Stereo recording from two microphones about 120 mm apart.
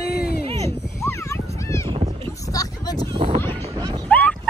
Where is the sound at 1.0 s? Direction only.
20° left (ahead or behind).